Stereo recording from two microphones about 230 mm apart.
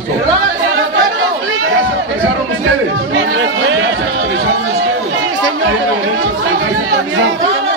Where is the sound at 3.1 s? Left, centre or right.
Right.